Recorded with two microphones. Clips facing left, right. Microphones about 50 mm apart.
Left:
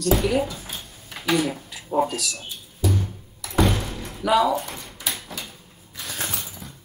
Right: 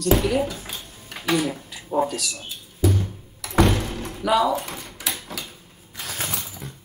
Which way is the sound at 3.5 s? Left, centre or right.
Right.